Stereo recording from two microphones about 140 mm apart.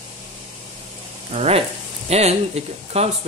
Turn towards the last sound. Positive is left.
turn(degrees=-50)  # may be behind; listen again after turning